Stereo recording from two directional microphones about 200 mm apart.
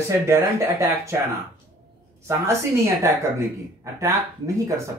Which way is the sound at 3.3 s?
15° right (ahead or behind).